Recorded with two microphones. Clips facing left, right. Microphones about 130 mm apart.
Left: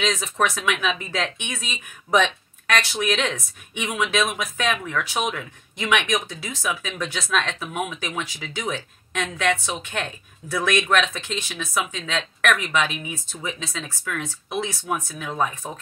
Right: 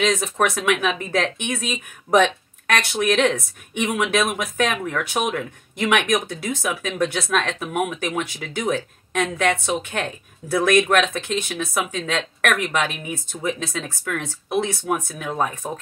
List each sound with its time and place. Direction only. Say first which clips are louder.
0.0 s speech: right 3 dB; 55° right (ahead or behind)